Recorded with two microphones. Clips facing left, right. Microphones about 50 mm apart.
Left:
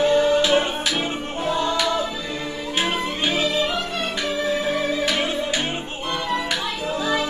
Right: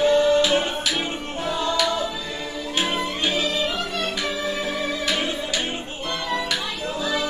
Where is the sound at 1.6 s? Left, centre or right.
Centre.